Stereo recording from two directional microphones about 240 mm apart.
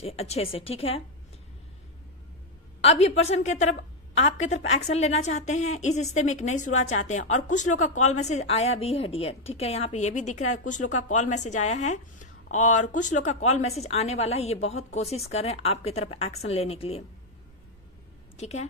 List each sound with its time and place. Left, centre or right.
0.0 s a woman's voice: left
2.8 s a woman's voice: left
18.3 s a woman's voice: left